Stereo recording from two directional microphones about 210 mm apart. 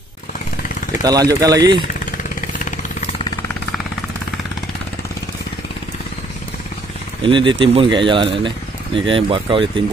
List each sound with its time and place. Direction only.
1.0 s speech: 15° right (ahead or behind)
7.2 s speech: 25° right (ahead or behind)